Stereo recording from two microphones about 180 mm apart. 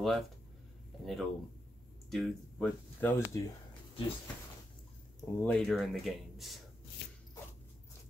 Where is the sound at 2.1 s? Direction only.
Centre (ahead or behind).